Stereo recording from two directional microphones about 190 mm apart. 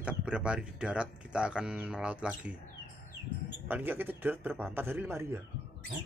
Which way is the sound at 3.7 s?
10° right (ahead or behind).